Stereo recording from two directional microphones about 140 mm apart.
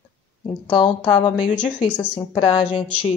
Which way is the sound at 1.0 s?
40° left (ahead or behind).